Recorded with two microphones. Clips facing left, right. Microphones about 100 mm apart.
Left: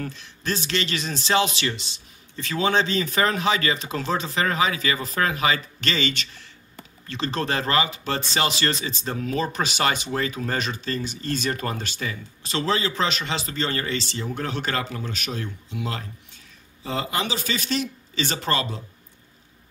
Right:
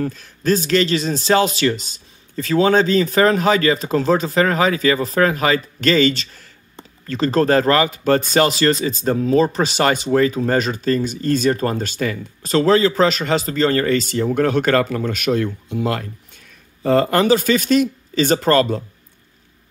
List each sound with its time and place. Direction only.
0.0 s speech: 45° right (ahead or behind)